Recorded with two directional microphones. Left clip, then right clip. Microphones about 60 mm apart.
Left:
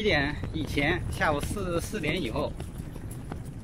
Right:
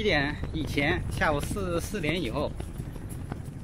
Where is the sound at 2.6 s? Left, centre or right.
Left.